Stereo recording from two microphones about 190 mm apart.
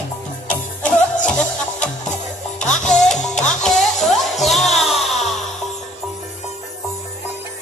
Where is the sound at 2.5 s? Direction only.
40° left (ahead or behind).